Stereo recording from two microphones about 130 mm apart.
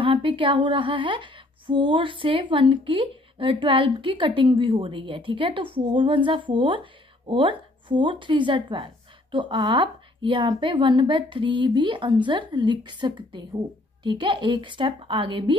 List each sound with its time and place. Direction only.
0.0 s a woman's voice: 40° right (ahead or behind)